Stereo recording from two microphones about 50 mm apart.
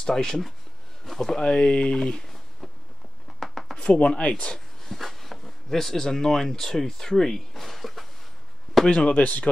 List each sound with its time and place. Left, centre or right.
0.0 s speech: centre
2.6 s a sound: centre
3.7 s speech: left
4.9 s speech: centre
8.8 s speech: left